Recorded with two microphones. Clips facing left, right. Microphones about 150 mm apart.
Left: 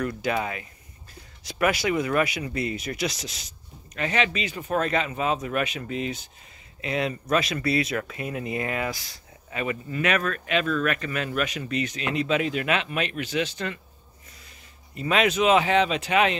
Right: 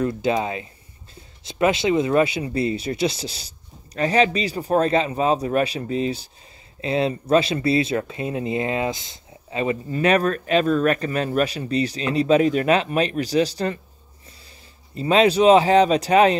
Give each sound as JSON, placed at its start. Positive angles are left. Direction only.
{"t": 0.0, "sound": "speech", "side_deg": -25}
{"t": 15.0, "sound": "speech", "side_deg": -30}